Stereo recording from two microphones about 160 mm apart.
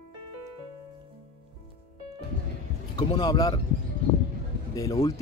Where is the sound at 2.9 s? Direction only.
25° left (ahead or behind).